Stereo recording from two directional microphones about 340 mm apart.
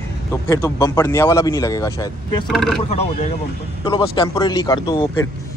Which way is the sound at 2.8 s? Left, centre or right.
Centre.